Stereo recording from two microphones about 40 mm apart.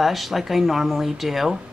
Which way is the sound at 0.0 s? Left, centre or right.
Centre.